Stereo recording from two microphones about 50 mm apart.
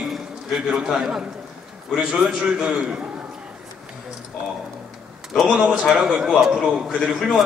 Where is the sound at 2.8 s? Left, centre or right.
Right.